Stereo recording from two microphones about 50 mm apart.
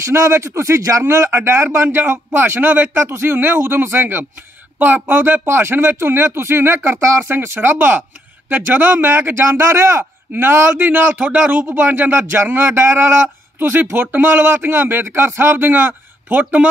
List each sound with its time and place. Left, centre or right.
0.0 s speech: right
1.0 s speech: right
2.0 s a man's voice: right
3.1 s speech: right
4.7 s speech: right
7.2 s a man's voice: right
9.3 s speech: right
10.3 s a man's voice: right